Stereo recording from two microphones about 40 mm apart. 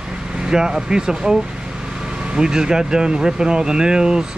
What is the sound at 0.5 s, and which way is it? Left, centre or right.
Speech, centre.